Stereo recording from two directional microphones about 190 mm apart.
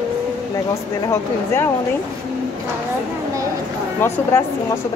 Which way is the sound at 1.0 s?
15° left (ahead or behind).